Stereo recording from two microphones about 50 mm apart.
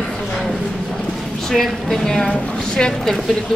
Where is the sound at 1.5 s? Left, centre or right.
Centre.